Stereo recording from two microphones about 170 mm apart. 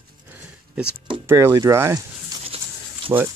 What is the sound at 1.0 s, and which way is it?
Speech, 20° right (ahead or behind).